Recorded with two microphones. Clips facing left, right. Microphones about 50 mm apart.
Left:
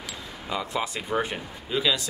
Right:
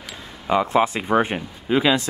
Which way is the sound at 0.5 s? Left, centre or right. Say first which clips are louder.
Right 11 dB; right.